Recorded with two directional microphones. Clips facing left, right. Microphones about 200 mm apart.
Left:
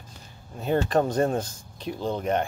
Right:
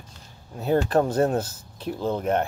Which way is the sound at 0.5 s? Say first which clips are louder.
Right 2 dB; 5° right (ahead or behind).